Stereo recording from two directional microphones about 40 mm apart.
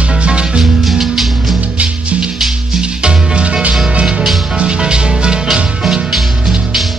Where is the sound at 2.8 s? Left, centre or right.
Right.